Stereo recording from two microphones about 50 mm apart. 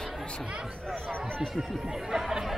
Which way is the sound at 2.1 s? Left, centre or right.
Centre.